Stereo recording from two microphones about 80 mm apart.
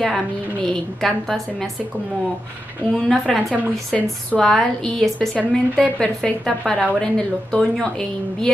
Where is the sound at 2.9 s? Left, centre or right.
Centre.